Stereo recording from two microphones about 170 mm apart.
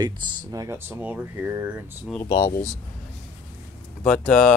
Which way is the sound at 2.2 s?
25° left (ahead or behind).